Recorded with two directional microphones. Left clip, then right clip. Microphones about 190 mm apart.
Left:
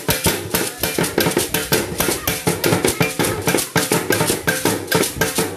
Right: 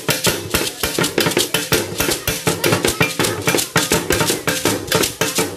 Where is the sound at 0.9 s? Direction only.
55° left (ahead or behind).